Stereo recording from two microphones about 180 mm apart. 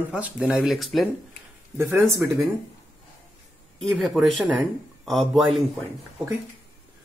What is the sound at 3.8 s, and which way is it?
Speech, centre (ahead or behind).